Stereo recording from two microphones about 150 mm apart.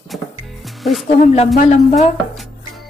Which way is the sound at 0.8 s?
Centre (ahead or behind).